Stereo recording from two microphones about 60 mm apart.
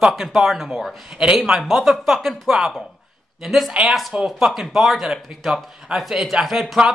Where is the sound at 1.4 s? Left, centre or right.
Centre.